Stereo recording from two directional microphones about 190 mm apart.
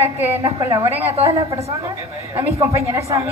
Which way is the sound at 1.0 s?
35° right (ahead or behind).